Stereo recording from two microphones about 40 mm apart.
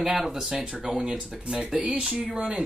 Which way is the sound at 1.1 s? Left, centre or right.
Right.